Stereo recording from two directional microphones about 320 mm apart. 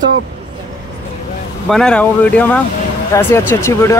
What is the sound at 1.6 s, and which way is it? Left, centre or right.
Speech, centre.